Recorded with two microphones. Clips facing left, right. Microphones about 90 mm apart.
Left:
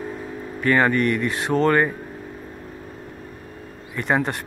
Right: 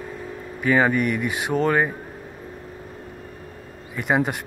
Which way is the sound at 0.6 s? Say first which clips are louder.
Left 1 dB; 5° right (ahead or behind).